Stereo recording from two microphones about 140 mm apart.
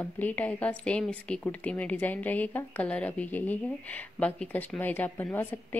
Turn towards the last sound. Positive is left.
turn(degrees=15)  # may be behind; listen again after turning